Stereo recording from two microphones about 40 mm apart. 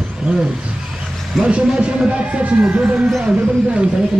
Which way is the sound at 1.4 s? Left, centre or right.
Right.